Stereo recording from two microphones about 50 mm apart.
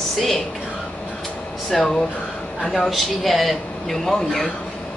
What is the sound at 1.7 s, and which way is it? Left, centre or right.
A woman's voice, centre.